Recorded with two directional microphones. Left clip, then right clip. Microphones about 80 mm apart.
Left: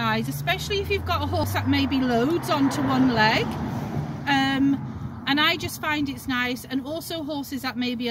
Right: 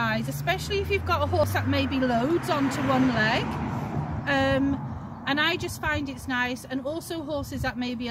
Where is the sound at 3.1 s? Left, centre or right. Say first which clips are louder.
Left 4 dB; right.